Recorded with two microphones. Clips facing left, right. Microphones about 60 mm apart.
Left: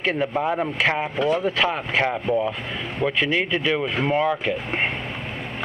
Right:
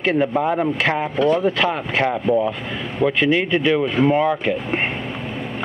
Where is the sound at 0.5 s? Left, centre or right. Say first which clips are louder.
Right 3 dB; centre.